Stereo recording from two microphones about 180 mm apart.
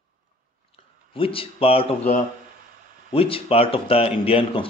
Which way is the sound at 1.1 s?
30° left (ahead or behind).